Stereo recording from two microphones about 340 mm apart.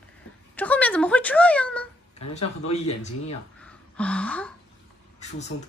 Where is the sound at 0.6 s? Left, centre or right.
Centre.